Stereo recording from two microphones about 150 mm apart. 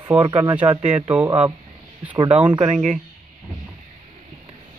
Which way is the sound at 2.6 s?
50° right (ahead or behind).